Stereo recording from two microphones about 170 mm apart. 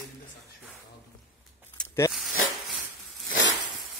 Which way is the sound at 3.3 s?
90° left.